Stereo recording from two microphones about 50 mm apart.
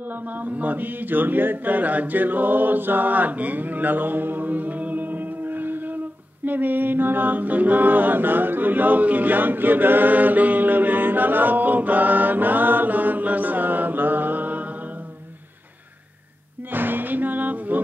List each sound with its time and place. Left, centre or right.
0.4 s a capella: right
6.4 s mantra: right
16.7 s speech: right